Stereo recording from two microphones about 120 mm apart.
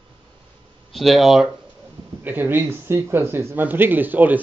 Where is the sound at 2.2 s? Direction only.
15° right (ahead or behind).